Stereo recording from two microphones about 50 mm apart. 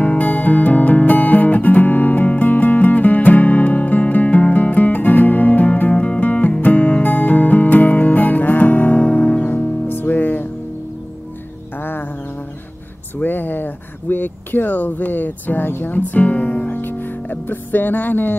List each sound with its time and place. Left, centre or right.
0.0 s music: left
9.8 s music: left
11.8 s music: left
13.2 s a sound: left